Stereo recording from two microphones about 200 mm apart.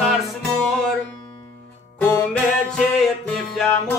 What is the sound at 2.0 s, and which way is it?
Music, 10° left (ahead or behind).